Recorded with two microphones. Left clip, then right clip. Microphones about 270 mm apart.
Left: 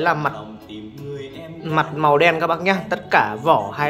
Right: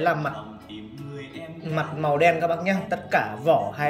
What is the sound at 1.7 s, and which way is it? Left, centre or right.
A man's voice, centre.